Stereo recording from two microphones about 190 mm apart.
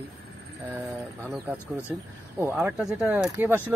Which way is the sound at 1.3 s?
10° right (ahead or behind).